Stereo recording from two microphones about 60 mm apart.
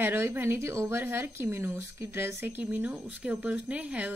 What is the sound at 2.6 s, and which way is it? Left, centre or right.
Speech, right.